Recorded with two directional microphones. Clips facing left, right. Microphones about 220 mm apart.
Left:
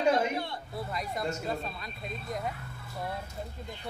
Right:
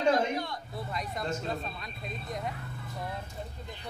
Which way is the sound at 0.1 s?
25° left (ahead or behind).